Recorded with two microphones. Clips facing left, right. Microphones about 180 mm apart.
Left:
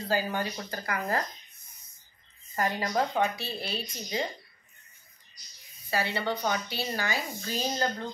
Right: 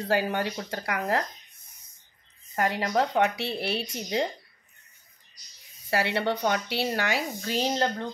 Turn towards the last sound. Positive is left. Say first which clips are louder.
# right 4 dB
turn(degrees=-70)  # may be behind; listen again after turning